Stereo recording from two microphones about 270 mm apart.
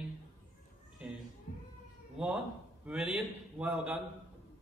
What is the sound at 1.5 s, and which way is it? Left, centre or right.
Cat, left.